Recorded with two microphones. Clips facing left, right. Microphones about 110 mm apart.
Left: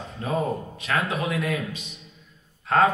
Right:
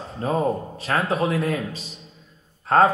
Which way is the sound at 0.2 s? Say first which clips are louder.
Right 4 dB; 35° right (ahead or behind).